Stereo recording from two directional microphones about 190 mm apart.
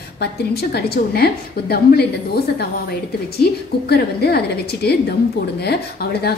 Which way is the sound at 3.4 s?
55° left (ahead or behind).